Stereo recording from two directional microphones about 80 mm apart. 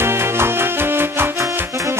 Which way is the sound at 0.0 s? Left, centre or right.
Right.